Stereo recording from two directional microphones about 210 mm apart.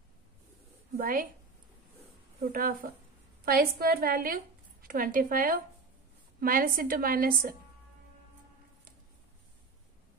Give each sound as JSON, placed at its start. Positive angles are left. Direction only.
{"t": 0.9, "sound": "a woman's voice", "side_deg": -40}
{"t": 2.5, "sound": "a woman's voice", "side_deg": -45}